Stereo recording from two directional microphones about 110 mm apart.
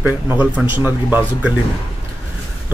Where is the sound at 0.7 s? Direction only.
15° right (ahead or behind).